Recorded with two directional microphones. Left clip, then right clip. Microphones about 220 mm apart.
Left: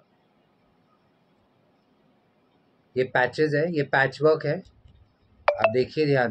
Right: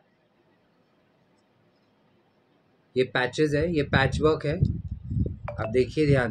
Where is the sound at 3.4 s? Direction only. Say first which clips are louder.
Left 1 dB; 15° right (ahead or behind).